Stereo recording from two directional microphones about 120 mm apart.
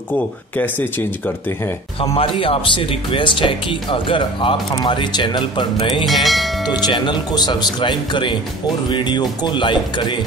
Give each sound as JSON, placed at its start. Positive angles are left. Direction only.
{"t": 0.6, "sound": "speech", "side_deg": 15}
{"t": 2.0, "sound": "speech", "side_deg": 50}
{"t": 6.0, "sound": "speech", "side_deg": 0}
{"t": 6.7, "sound": "speech", "side_deg": 40}